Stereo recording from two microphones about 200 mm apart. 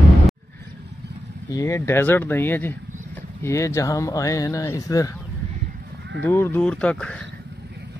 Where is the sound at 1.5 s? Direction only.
15° left (ahead or behind).